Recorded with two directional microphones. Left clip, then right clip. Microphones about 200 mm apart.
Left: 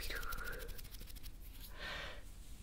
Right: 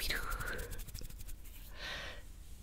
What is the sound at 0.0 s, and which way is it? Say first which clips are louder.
Whispering: right 6 dB; 20° right (ahead or behind).